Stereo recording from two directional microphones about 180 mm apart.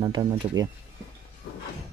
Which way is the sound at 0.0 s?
25° right (ahead or behind).